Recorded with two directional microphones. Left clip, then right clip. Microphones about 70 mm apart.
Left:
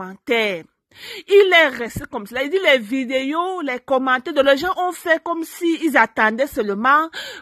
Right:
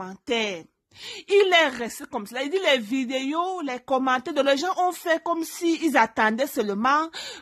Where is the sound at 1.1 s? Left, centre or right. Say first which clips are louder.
Left 6 dB; left.